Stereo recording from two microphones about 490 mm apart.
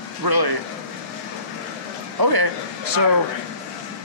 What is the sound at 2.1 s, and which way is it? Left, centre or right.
Speech, right.